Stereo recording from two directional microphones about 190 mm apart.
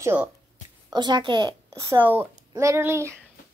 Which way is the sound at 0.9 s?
25° right (ahead or behind).